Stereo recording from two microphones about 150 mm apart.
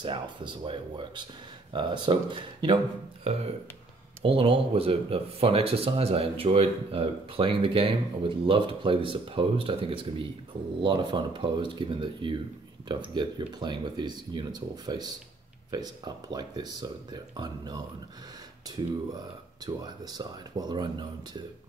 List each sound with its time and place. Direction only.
0.0 s speech: 30° right (ahead or behind)
3.3 s speech: 45° right (ahead or behind); by 17.8 s 25° right (ahead or behind)
19.6 s speech: 25° right (ahead or behind)